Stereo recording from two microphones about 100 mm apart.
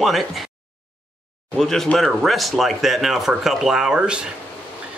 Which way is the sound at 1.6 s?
5° left (ahead or behind).